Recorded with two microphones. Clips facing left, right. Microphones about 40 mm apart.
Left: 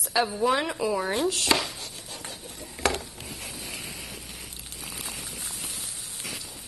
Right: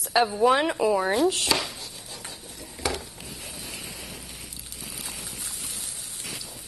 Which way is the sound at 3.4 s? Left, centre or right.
Centre.